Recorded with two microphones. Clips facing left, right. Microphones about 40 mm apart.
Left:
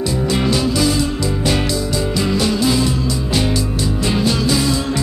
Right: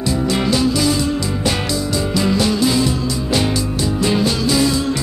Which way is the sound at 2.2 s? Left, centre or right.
Centre.